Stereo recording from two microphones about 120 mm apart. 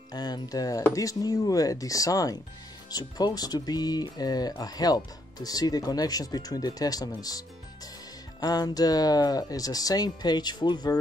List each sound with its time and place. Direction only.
0.1 s speech: 35° left (ahead or behind)